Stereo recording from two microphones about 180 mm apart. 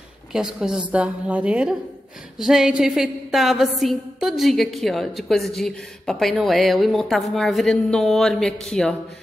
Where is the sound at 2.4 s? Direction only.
Centre (ahead or behind).